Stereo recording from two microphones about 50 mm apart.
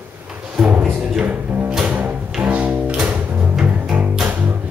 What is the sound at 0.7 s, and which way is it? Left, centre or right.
Music, right.